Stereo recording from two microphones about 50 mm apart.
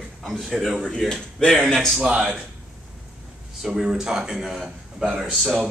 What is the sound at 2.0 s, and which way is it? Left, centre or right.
Speech, centre.